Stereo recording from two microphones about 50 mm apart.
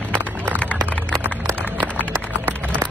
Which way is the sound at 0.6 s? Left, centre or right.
Left.